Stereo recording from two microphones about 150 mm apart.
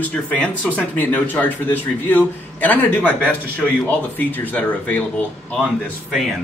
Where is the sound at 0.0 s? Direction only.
10° left (ahead or behind).